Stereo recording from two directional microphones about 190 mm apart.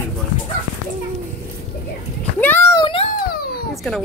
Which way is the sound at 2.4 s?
10° left (ahead or behind).